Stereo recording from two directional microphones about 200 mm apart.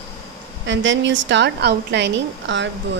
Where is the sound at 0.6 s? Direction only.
65° right (ahead or behind).